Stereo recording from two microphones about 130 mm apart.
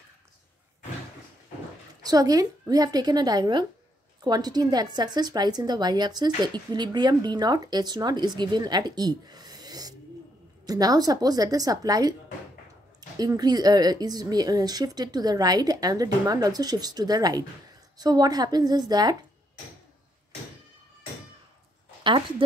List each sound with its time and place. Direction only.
2.0 s a woman's voice: 25° right (ahead or behind)
13.2 s a woman's voice: 30° right (ahead or behind)